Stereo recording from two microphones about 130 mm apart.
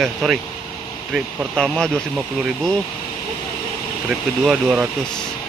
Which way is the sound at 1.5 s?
5° left (ahead or behind).